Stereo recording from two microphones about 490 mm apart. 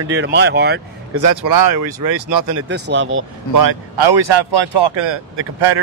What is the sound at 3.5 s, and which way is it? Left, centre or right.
Speech, right.